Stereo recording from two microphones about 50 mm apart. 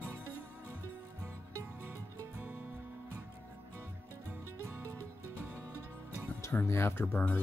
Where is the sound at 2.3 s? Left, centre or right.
Right.